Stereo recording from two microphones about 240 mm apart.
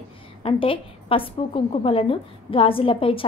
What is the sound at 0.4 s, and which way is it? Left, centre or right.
A woman's voice, left.